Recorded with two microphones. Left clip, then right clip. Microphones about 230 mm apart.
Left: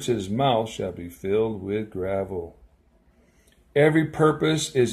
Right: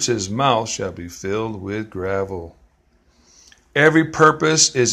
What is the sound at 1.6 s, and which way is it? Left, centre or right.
Speech, centre.